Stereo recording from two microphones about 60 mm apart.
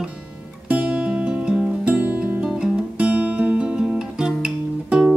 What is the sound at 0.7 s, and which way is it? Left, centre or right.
Music, centre.